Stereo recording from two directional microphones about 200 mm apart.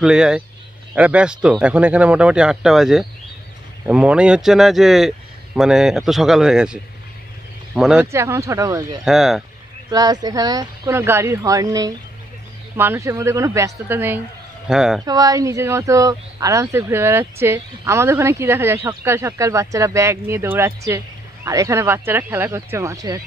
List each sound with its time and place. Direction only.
0.0 s speech: 5° right (ahead or behind)
8.1 s speech: 15° right (ahead or behind)
9.0 s speech: centre (ahead or behind)
9.8 s speech: 20° right (ahead or behind); by 15.0 s 5° right (ahead or behind)
15.0 s speech: 20° right (ahead or behind)